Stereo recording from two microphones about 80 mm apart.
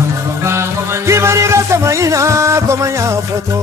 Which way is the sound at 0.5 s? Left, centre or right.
Right.